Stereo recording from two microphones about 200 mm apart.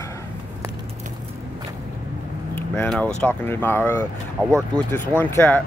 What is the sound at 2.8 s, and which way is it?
Speech, 5° left (ahead or behind).